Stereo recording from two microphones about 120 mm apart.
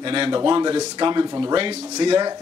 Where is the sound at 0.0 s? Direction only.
45° right (ahead or behind).